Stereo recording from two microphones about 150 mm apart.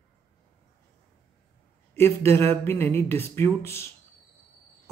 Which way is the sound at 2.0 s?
15° left (ahead or behind).